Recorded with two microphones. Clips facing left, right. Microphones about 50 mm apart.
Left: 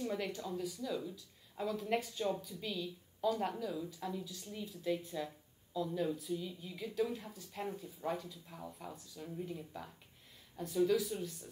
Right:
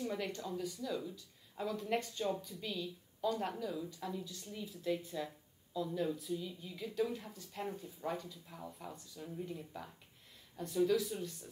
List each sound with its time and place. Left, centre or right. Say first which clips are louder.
0.0 s a woman's voice: left 1 dB; centre